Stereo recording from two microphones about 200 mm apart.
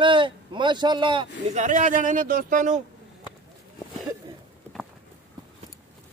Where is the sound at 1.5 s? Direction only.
40° right (ahead or behind).